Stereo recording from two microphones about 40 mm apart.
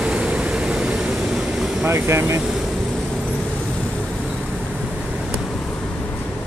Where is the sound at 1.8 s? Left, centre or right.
Right.